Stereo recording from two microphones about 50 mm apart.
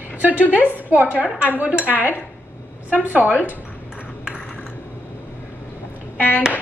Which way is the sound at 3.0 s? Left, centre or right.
Right.